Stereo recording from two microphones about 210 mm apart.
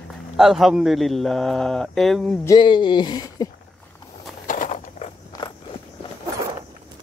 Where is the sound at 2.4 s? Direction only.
20° left (ahead or behind).